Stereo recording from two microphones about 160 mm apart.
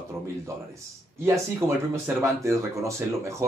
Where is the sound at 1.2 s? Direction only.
15° right (ahead or behind).